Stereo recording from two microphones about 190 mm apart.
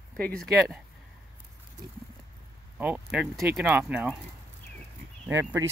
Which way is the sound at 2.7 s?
5° right (ahead or behind).